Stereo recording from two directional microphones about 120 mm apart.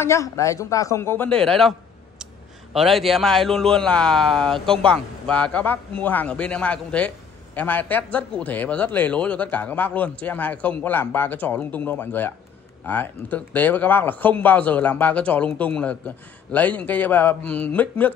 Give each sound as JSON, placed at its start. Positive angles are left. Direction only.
{"t": 0.0, "sound": "speech", "side_deg": 25}
{"t": 1.4, "sound": "a sound", "side_deg": 5}
{"t": 2.7, "sound": "a man's voice", "side_deg": 0}